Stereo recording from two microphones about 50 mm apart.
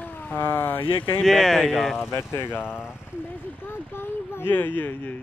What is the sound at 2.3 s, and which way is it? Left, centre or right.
Speech, left.